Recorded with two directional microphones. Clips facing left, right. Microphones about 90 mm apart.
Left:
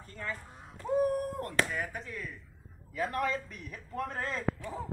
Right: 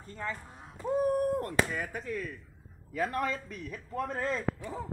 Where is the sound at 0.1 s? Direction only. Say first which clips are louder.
Right 2 dB; 30° right (ahead or behind).